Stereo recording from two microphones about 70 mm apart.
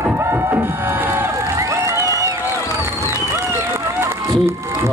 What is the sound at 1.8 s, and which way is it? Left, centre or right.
Music, right.